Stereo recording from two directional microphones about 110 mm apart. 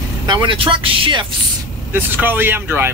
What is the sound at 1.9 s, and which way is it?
Speech, 20° right (ahead or behind).